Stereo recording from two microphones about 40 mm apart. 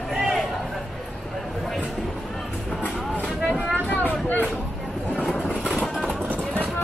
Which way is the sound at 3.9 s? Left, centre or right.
Left.